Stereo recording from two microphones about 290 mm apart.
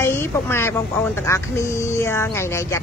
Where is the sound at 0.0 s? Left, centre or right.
Centre.